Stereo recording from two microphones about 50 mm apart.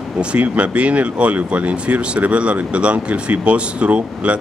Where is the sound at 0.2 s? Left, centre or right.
Right.